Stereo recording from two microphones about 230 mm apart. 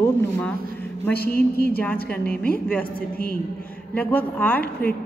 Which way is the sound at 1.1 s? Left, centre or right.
Left.